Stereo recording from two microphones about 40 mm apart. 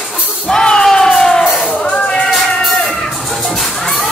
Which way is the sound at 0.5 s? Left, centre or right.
Left.